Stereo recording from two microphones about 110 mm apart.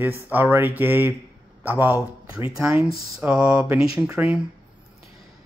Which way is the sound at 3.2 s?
5° right (ahead or behind).